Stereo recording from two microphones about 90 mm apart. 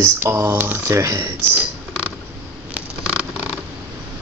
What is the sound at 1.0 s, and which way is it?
Speech, 35° right (ahead or behind).